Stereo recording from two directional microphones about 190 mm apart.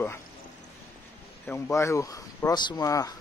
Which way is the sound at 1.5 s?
15° left (ahead or behind).